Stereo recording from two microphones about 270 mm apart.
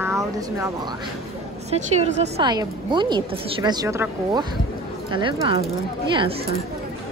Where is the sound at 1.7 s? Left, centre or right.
Right.